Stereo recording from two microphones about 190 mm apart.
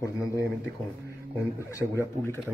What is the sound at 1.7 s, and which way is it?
Speech, 15° left (ahead or behind).